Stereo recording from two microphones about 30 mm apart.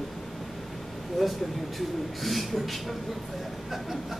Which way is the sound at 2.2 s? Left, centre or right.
Centre.